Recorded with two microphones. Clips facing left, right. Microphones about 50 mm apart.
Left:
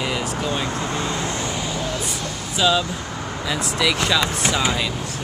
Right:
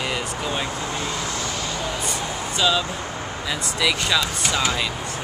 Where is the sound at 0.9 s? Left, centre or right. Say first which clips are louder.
Left 2 dB; left.